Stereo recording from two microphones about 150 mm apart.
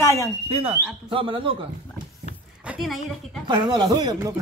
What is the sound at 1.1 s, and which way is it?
Speech, 35° right (ahead or behind).